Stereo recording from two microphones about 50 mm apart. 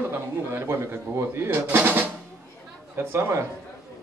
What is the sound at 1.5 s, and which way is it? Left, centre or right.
Speech, right.